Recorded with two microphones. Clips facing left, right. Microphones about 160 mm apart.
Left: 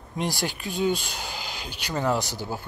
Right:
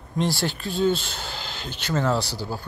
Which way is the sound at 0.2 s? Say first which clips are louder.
Right 4 dB; 15° left (ahead or behind).